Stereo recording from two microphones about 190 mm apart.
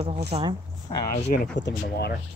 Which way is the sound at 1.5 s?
65° left (ahead or behind).